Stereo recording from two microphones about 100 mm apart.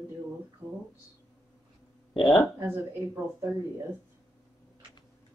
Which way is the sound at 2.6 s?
25° right (ahead or behind).